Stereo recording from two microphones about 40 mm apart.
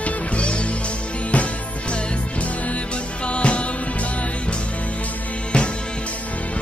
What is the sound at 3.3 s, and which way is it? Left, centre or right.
Music, left.